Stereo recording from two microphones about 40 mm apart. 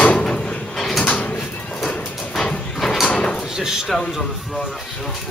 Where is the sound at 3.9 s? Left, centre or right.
Centre.